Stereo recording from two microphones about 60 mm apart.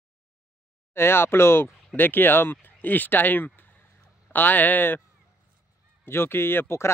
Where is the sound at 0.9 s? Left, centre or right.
Left.